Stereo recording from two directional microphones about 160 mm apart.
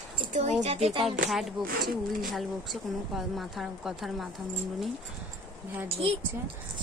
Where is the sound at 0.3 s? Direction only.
45° right (ahead or behind).